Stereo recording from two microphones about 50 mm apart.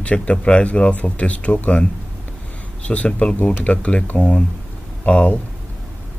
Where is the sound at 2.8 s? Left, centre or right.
Left.